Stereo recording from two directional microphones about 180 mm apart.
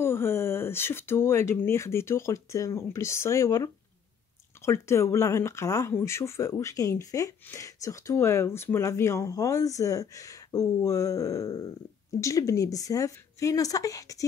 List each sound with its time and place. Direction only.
0.0 s a woman's voice: 15° left (ahead or behind)